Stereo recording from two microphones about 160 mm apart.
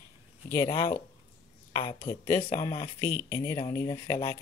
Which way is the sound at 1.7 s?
30° left (ahead or behind).